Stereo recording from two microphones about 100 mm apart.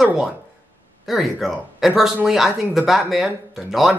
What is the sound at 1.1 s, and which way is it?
Speech, centre (ahead or behind).